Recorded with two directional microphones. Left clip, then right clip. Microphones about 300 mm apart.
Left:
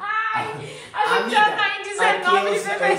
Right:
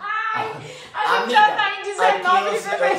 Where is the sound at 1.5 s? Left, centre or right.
Centre.